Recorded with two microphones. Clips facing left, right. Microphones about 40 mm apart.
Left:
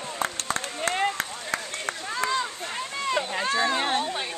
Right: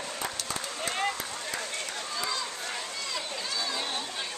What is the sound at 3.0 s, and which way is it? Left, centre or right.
Run, left.